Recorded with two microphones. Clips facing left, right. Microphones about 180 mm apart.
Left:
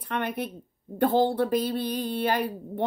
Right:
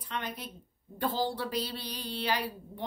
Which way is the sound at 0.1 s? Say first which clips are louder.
Left 9 dB; 60° left (ahead or behind).